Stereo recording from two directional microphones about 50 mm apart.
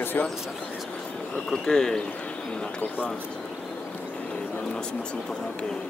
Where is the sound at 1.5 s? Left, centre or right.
Centre.